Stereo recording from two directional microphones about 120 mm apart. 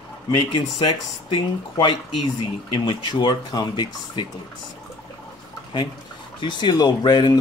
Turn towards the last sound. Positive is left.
turn(degrees=35)  # may be behind; listen again after turning